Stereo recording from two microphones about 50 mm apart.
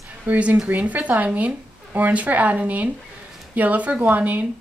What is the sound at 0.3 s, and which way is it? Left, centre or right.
Speech, right.